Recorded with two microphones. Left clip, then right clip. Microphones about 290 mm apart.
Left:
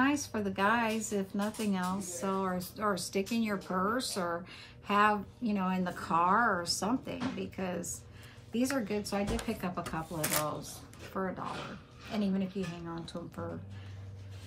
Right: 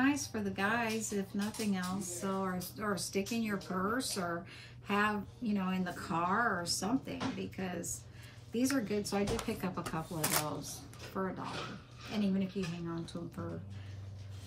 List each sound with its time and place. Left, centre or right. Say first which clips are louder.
0.0 s speech: left 3 dB; centre